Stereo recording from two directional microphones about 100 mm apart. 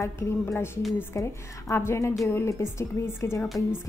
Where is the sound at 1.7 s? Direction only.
25° left (ahead or behind).